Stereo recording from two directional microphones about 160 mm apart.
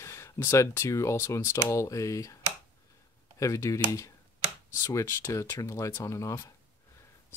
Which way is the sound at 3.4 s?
20° left (ahead or behind).